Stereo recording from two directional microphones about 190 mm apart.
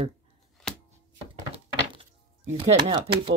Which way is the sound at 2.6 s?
25° right (ahead or behind).